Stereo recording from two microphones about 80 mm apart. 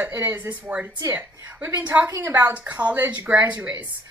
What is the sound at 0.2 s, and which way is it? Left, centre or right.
A woman's voice, right.